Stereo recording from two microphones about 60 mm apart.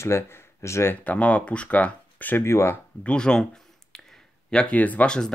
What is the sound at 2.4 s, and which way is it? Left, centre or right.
Speech, left.